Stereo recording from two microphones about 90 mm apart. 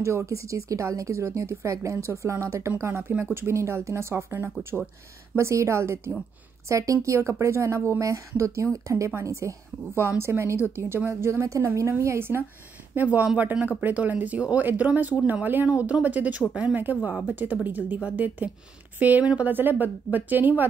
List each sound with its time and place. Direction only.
0.0 s a woman's voice: 30° right (ahead or behind)